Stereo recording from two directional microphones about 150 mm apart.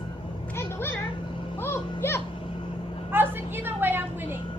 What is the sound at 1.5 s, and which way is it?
Vehicle, 15° left (ahead or behind).